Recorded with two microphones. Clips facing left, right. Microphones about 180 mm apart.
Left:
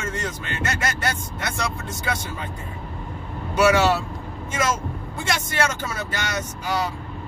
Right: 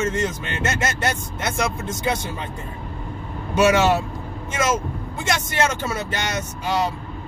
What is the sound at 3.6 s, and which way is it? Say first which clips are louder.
Speech: right 1 dB; 20° right (ahead or behind).